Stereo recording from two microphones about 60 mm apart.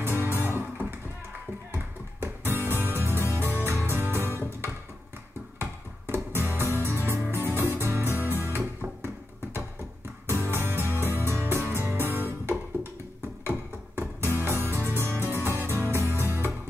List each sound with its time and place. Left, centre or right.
0.0 s music: right
2.4 s music: right
5.6 s music: right
10.2 s music: right